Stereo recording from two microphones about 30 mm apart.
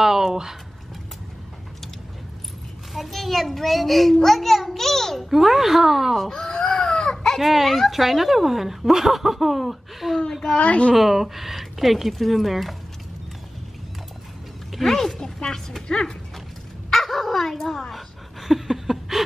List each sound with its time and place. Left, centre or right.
0.0 s speech: centre
2.9 s a child's voice: centre
5.3 s speech: centre
6.7 s chicken: centre
7.3 s a child's voice: centre
10.4 s speech: left
11.0 s a child's voice: centre
14.8 s speech: centre
16.9 s dog: centre
18.7 s a sound: centre